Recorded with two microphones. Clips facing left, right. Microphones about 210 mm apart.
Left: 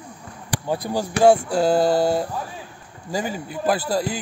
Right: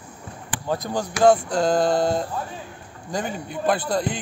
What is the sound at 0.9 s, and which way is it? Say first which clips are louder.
A man's voice: left 2 dB; 10° left (ahead or behind).